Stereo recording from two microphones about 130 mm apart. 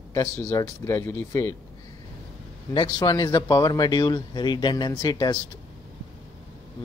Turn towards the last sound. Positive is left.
turn(degrees=35)  # may be behind; listen again after turning